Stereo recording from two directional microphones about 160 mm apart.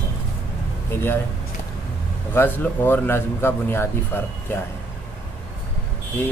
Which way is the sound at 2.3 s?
10° left (ahead or behind).